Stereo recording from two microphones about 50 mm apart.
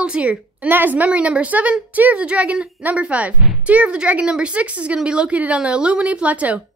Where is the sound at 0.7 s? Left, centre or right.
Right.